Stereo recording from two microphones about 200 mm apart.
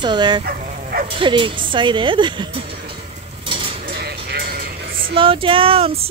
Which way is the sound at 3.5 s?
25° right (ahead or behind).